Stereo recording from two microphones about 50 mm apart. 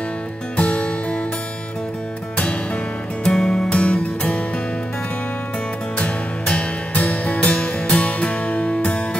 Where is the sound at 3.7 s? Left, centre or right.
Left.